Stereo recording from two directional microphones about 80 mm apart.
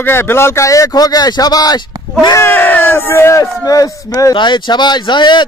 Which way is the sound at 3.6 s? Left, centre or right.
Left.